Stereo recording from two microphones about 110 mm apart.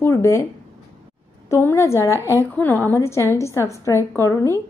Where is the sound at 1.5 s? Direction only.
25° left (ahead or behind).